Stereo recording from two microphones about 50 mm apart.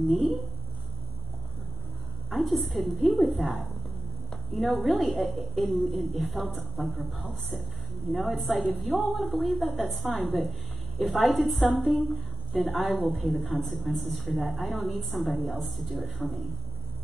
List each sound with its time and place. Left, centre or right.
0.1 s a woman's voice: centre
2.2 s a woman's voice: centre